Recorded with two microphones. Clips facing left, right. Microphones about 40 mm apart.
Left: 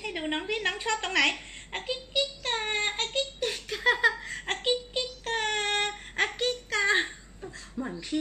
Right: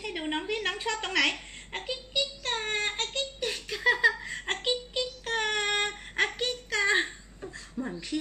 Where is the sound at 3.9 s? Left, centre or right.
Centre.